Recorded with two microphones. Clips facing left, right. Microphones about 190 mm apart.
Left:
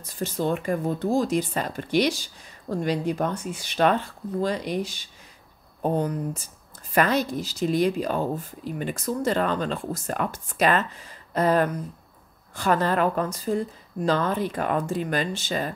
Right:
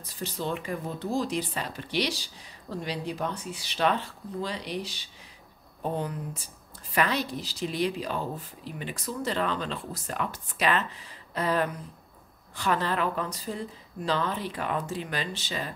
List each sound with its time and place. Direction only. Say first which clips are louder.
0.2 s speech: left 6 dB; 50° left (ahead or behind)